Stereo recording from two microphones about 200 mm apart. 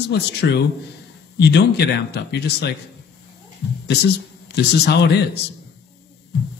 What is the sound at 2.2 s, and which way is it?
Speech, 55° left (ahead or behind).